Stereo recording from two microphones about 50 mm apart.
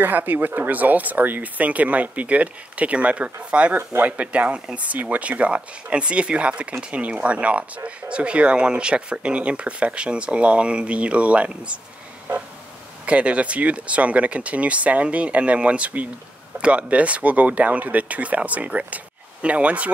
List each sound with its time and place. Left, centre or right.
0.0 s speech: right
3.7 s speech: right
4.2 s speech: right
13.0 s speech: right